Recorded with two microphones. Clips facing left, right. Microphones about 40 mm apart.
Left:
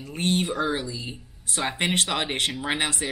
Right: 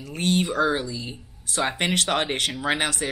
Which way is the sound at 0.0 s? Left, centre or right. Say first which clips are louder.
Even; left.